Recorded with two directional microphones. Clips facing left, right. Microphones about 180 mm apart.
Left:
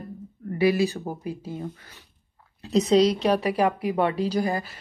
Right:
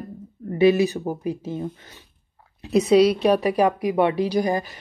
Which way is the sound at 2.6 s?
15° right (ahead or behind).